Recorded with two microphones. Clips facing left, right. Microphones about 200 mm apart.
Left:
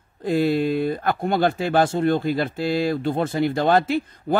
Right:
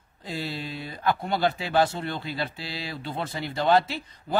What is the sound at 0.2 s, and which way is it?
A man's voice, 55° left (ahead or behind).